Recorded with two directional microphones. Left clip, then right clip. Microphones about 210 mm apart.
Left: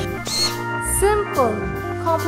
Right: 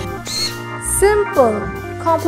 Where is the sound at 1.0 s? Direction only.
20° right (ahead or behind).